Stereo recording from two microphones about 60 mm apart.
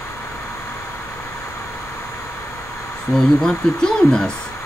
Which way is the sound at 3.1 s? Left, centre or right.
Centre.